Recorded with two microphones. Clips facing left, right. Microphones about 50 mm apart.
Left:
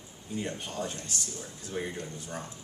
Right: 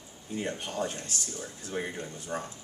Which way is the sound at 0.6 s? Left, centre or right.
Right.